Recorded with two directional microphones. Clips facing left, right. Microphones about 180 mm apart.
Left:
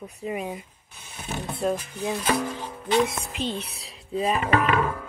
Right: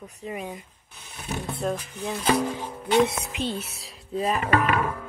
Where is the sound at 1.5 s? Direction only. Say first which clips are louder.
Left 3 dB; centre (ahead or behind).